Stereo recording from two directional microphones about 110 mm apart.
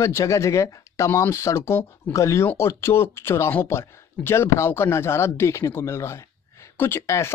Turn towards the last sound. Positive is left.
turn(degrees=25)  # may be behind; listen again after turning